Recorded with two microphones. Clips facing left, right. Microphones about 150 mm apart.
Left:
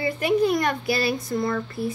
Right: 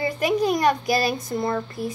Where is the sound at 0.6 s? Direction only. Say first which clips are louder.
Right 3 dB; 40° right (ahead or behind).